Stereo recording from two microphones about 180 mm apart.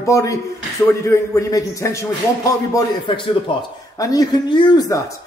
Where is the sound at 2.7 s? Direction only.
25° left (ahead or behind).